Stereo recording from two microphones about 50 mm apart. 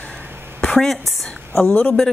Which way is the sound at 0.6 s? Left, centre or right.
Centre.